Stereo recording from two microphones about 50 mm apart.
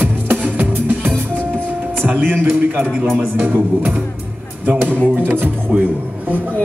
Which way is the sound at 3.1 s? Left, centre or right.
Right.